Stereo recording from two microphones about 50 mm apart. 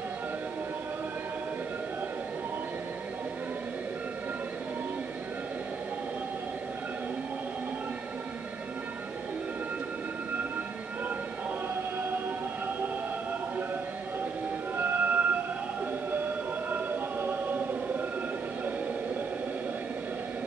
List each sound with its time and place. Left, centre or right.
11.7 s choir: right
14.8 s music: right
16.7 s choir: right